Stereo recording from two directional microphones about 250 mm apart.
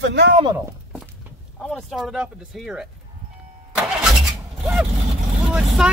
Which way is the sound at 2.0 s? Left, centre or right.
Centre.